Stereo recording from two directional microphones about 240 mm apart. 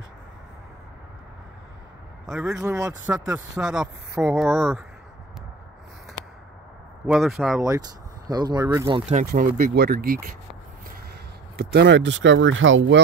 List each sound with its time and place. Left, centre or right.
2.4 s speech: centre
7.1 s speech: centre
8.3 s speech: centre
9.1 s speech: right
11.5 s speech: right